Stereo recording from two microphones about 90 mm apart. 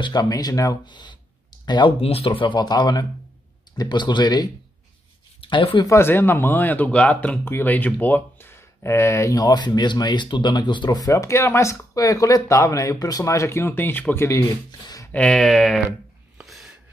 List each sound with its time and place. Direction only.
0.0 s speech: 50° left (ahead or behind)
0.8 s speech: 55° left (ahead or behind)
1.7 s speech: 75° left (ahead or behind); by 4.5 s 50° left (ahead or behind)
5.4 s speech: 80° left
5.9 s speech: 25° left (ahead or behind)
15.1 s speech: 5° left (ahead or behind)
16.4 s a sound: centre (ahead or behind)